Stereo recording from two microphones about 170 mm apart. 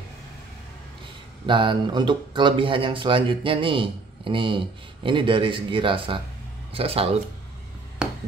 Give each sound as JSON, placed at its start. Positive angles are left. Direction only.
{"t": 1.4, "sound": "speech", "side_deg": -30}